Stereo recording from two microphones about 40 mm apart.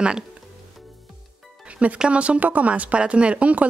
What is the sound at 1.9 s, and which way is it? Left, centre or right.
A woman's voice, right.